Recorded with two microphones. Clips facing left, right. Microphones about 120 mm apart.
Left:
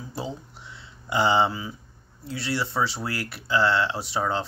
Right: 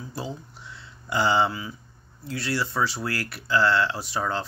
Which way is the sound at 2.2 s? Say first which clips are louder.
Even; 25° left (ahead or behind).